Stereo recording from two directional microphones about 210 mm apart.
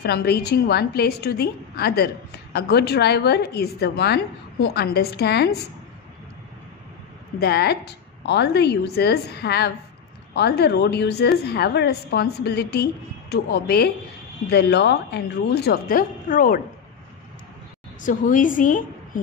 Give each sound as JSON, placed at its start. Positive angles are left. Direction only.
{"t": 0.0, "sound": "a woman's voice", "side_deg": 50}
{"t": 7.3, "sound": "a woman's voice", "side_deg": 50}
{"t": 18.0, "sound": "a woman's voice", "side_deg": 40}